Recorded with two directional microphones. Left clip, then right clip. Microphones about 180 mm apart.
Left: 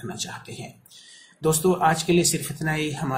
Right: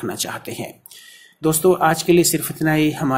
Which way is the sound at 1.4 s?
25° right (ahead or behind).